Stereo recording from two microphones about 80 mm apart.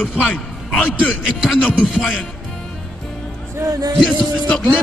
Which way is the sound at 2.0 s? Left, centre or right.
Centre.